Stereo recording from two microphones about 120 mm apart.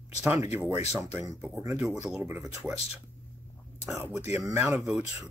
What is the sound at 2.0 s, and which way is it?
Speech, 10° right (ahead or behind).